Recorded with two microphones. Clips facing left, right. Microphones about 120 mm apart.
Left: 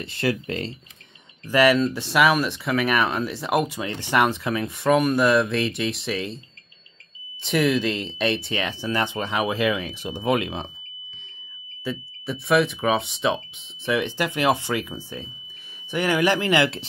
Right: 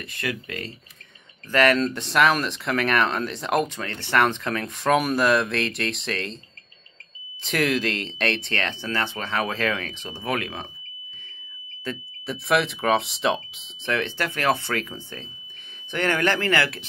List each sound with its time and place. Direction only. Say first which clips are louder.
0.0 s speech: left 6 dB; 30° left (ahead or behind)
1.5 s speech: left 2 dB; 10° left (ahead or behind)
7.4 s speech: left 3 dB; centre (ahead or behind); by 10.7 s 20° left (ahead or behind)
11.8 s speech: left 2 dB; 5° left (ahead or behind)
13.8 s speech: left 2 dB; 15° left (ahead or behind)